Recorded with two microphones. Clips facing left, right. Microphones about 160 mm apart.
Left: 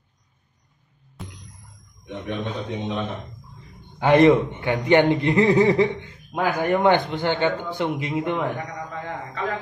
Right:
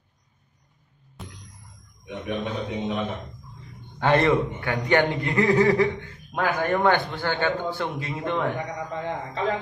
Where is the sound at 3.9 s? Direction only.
15° left (ahead or behind).